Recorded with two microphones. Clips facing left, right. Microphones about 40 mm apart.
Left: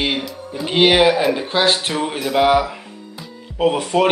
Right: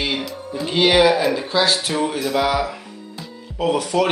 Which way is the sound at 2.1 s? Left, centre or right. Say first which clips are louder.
Left 2 dB; centre.